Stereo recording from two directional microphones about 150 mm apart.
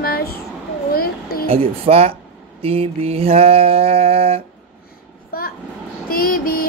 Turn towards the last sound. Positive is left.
turn(degrees=75)  # may be behind; listen again after turning